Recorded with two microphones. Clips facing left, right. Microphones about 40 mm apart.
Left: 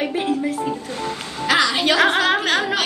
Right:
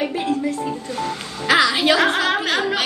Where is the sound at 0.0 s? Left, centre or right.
Centre.